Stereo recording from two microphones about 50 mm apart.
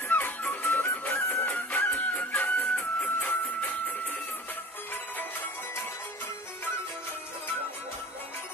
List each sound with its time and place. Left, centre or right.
0.1 s music: left
2.1 s chicken: left
3.2 s music: left